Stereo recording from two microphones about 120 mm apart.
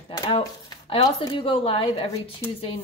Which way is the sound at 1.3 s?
50° left (ahead or behind).